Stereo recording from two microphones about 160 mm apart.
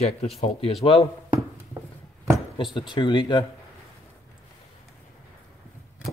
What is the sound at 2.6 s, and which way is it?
Speech, 30° left (ahead or behind).